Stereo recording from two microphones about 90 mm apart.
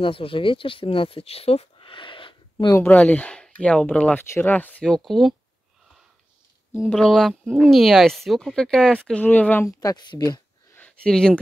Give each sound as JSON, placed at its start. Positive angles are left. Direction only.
{"t": 0.0, "sound": "speech", "side_deg": 80}
{"t": 2.9, "sound": "speech", "side_deg": 20}
{"t": 4.8, "sound": "speech", "side_deg": 5}
{"t": 6.9, "sound": "speech", "side_deg": 5}
{"t": 9.2, "sound": "speech", "side_deg": 20}
{"t": 9.7, "sound": "speech", "side_deg": 40}
{"t": 10.7, "sound": "a sound", "side_deg": 15}
{"t": 11.1, "sound": "speech", "side_deg": 5}